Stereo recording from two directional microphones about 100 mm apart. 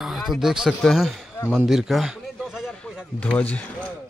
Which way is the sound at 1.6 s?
5° right (ahead or behind).